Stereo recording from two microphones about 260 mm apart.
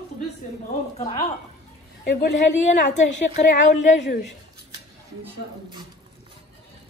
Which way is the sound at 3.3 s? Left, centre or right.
Left.